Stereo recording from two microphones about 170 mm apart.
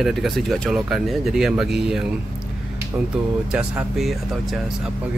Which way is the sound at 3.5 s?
5° right (ahead or behind).